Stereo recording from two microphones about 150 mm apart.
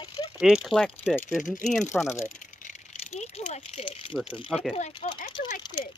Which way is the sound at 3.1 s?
50° left (ahead or behind).